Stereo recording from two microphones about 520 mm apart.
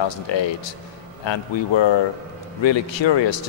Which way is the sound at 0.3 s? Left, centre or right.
Left.